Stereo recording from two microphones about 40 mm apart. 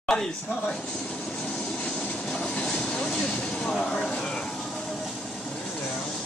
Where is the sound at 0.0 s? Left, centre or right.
Centre.